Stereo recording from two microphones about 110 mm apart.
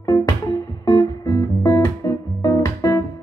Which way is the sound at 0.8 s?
30° left (ahead or behind).